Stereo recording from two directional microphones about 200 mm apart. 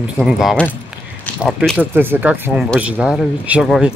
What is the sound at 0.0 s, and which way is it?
Speech, 5° right (ahead or behind).